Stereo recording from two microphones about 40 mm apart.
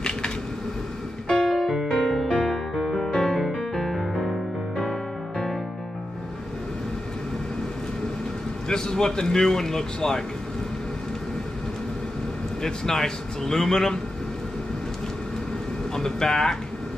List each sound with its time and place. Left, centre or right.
1.4 s music: centre
2.2 s music: centre
8.6 s speech: centre
12.6 s speech: centre
16.0 s speech: centre